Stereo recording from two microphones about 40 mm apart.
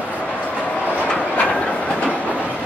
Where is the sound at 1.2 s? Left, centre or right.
Left.